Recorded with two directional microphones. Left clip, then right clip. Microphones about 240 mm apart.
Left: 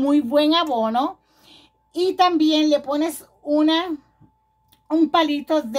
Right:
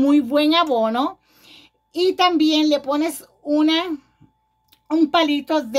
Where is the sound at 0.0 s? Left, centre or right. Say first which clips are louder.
Right 1 dB; right.